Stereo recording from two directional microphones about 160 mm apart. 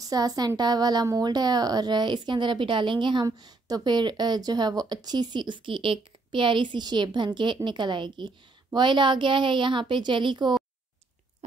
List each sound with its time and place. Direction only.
0.0 s a woman's voice: 25° right (ahead or behind)